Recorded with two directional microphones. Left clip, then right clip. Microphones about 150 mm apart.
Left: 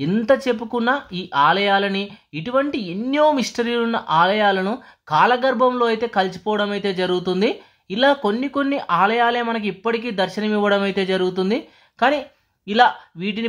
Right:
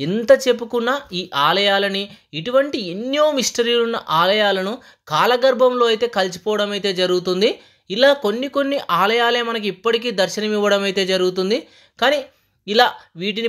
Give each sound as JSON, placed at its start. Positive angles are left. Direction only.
{"t": 0.0, "sound": "speech", "side_deg": -15}